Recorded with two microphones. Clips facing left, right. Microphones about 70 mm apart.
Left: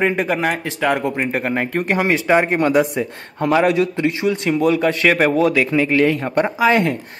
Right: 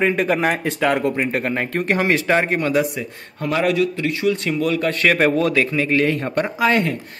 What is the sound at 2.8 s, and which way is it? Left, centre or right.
Speech, left.